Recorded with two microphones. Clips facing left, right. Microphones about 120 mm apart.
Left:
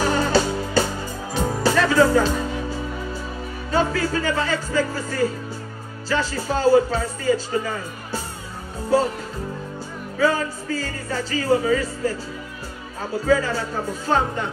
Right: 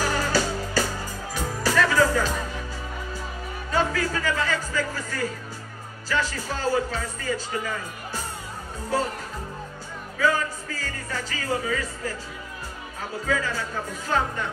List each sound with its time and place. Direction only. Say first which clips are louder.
0.0 s music: left 5 dB; 25° left (ahead or behind)
3.7 s speech: left 4 dB; 30° left (ahead or behind)
10.1 s speech: left 3 dB; 30° left (ahead or behind)
13.3 s speech: left 7 dB; 30° left (ahead or behind)